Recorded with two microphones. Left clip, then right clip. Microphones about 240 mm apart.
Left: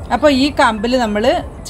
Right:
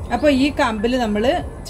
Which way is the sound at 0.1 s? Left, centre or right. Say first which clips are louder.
Left 4 dB; left.